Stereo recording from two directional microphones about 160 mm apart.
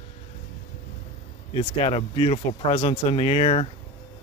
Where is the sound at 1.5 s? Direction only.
35° left (ahead or behind).